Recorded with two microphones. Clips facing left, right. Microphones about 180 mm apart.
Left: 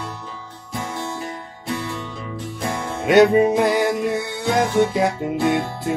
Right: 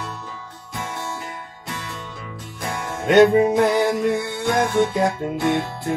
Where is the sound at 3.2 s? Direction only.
5° left (ahead or behind).